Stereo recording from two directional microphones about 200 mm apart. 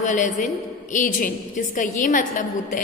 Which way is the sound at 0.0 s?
40° left (ahead or behind).